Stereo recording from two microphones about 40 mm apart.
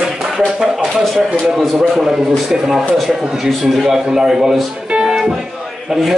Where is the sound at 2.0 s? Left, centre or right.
Centre.